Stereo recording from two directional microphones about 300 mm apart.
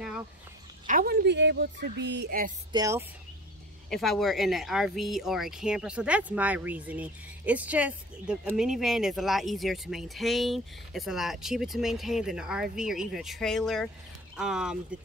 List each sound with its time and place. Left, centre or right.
0.8 s a woman's voice: right
2.7 s speech: centre
3.9 s speech: centre